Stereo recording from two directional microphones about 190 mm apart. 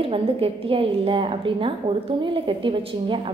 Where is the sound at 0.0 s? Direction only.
30° right (ahead or behind).